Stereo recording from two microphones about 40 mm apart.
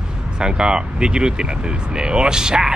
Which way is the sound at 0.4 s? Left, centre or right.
Right.